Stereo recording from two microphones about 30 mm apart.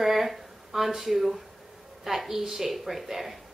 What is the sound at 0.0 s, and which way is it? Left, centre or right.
A woman's voice, centre.